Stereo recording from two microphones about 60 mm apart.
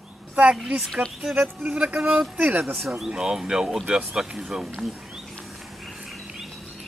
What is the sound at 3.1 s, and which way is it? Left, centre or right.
Speech, centre.